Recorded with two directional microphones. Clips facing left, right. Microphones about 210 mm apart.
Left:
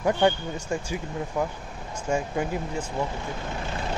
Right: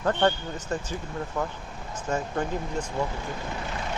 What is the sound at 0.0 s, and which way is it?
Speech, 10° left (ahead or behind).